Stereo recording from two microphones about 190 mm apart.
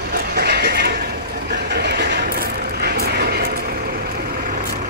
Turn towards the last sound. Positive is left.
turn(degrees=-55)  # may be behind; listen again after turning